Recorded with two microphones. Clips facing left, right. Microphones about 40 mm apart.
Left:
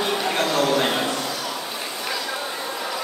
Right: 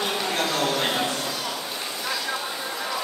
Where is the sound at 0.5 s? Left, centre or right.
Centre.